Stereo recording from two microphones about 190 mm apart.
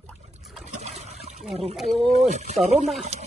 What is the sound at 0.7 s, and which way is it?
Trickle, 35° right (ahead or behind).